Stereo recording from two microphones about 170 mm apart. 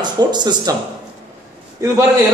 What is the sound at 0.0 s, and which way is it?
Speech, 25° right (ahead or behind).